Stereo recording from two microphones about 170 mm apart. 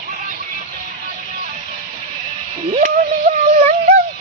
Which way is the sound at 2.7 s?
45° right (ahead or behind).